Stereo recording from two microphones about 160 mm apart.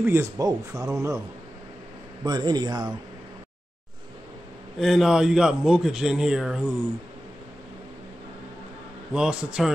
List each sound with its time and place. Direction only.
0.0 s speech: 15° right (ahead or behind)
2.2 s speech: 25° right (ahead or behind)
4.7 s a man's voice: centre (ahead or behind)
9.1 s a man's voice: 5° right (ahead or behind)